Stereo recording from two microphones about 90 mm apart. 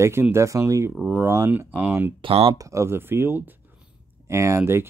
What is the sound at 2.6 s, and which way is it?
Speech, 35° right (ahead or behind).